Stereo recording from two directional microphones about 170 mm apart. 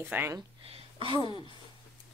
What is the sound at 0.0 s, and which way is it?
Speech, 15° right (ahead or behind).